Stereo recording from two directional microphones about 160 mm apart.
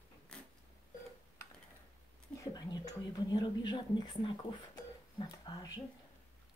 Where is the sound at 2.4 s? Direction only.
25° left (ahead or behind).